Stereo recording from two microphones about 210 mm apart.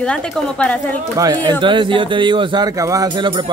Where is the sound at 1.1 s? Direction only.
20° right (ahead or behind).